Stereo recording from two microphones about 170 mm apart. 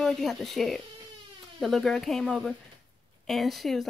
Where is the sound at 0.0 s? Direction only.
Centre (ahead or behind).